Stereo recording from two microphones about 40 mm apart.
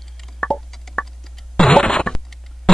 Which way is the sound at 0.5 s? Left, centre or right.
Left.